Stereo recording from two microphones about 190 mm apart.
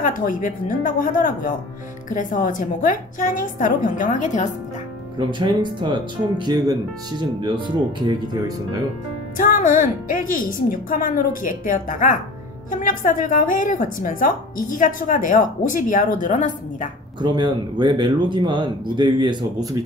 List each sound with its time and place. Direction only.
0.0 s a woman's voice: 45° left (ahead or behind)
5.2 s speech: 25° right (ahead or behind)
9.4 s a woman's voice: 45° left (ahead or behind)
17.2 s speech: 25° right (ahead or behind)